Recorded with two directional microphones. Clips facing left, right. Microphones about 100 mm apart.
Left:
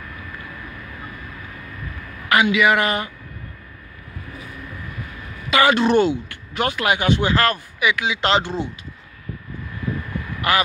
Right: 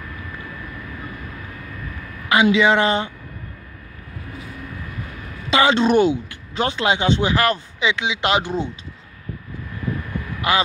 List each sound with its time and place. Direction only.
2.4 s speech: 30° right (ahead or behind)
5.5 s speech: 20° right (ahead or behind)
10.4 s speech: 20° right (ahead or behind)